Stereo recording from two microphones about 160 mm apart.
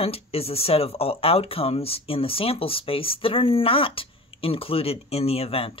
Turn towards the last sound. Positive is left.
turn(degrees=35)  # may be behind; listen again after turning